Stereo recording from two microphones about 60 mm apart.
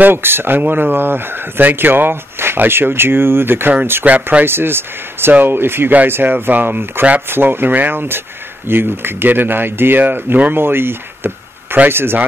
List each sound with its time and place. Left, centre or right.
0.0 s speech: right
4.0 s speech: right
4.5 s speech: right